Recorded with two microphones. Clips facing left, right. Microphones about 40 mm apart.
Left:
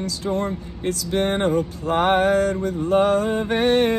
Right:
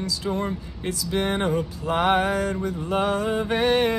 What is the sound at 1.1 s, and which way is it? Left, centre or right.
Music, left.